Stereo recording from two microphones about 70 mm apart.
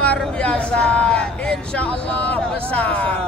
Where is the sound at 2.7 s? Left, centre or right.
Centre.